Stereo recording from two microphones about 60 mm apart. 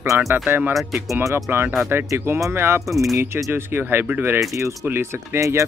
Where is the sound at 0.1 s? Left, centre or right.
Right.